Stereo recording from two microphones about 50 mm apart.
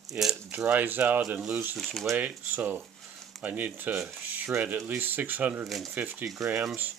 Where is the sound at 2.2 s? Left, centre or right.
Right.